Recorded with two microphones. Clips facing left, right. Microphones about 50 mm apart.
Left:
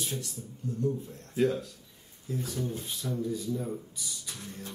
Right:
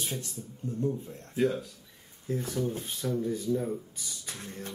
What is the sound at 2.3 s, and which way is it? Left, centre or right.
Speech, right.